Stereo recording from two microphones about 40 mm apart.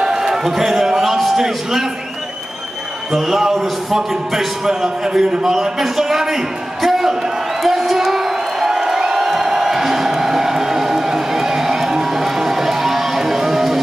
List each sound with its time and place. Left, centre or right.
0.0 s a man's voice: centre
3.1 s a man's voice: centre
7.6 s a sound: centre